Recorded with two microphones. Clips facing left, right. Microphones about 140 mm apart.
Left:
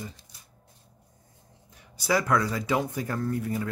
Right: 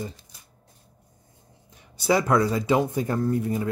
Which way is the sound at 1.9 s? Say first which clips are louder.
Right 4 dB; 25° right (ahead or behind).